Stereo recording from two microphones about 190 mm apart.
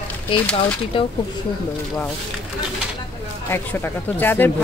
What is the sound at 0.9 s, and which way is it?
Speech, 30° left (ahead or behind).